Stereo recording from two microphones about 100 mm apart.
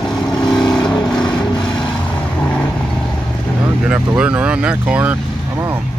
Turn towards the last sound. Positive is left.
turn(degrees=-15)  # may be behind; listen again after turning